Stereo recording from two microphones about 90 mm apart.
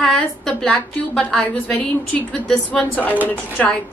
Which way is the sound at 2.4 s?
5° left (ahead or behind).